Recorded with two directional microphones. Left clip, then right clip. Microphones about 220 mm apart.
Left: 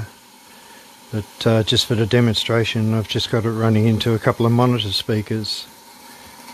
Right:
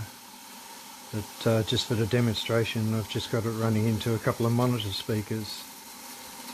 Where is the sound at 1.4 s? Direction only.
50° left (ahead or behind).